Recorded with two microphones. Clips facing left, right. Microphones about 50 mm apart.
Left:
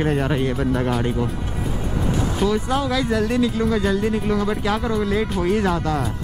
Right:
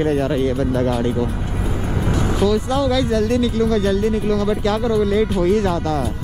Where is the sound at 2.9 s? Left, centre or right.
Centre.